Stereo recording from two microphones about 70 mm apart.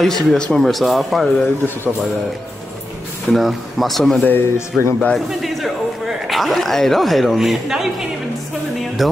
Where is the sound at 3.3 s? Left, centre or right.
Centre.